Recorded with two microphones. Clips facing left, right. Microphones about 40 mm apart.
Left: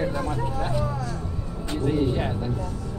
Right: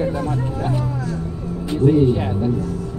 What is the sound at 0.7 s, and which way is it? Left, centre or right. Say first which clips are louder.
Speech: right 4 dB; centre.